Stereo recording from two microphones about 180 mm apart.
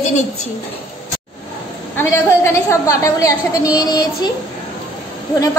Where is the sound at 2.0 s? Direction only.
15° left (ahead or behind).